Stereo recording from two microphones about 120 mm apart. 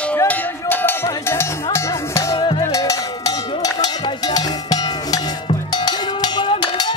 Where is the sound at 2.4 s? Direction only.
45° left (ahead or behind).